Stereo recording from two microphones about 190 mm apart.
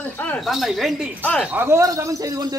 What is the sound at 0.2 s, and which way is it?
Speech, 5° left (ahead or behind).